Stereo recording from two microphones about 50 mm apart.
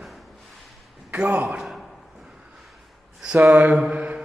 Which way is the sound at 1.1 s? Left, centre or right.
Right.